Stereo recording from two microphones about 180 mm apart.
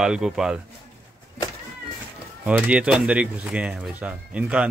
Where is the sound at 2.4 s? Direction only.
5° right (ahead or behind).